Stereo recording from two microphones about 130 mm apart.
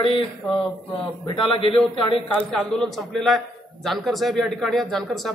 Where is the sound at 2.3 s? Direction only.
5° left (ahead or behind).